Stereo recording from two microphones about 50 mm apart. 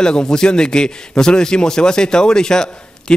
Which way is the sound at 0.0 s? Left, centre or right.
Centre.